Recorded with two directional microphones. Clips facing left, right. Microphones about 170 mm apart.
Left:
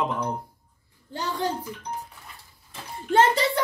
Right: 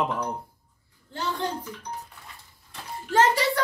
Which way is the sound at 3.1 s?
30° left (ahead or behind).